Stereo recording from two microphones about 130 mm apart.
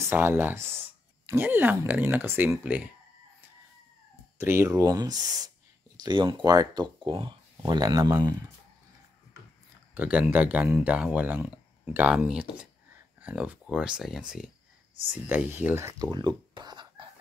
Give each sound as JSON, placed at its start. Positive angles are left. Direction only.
{"t": 0.0, "sound": "speech", "side_deg": -20}
{"t": 4.4, "sound": "speech", "side_deg": -20}
{"t": 9.9, "sound": "speech", "side_deg": -10}
{"t": 15.2, "sound": "speech", "side_deg": -15}
{"t": 16.1, "sound": "a sound", "side_deg": -35}